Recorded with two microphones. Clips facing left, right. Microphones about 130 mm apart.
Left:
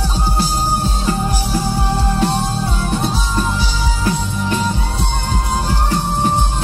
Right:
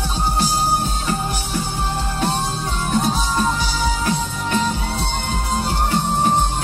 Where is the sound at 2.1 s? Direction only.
40° left (ahead or behind).